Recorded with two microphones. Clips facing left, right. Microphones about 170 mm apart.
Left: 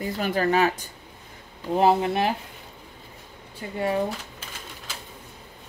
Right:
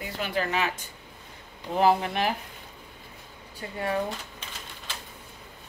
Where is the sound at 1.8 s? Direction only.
25° left (ahead or behind).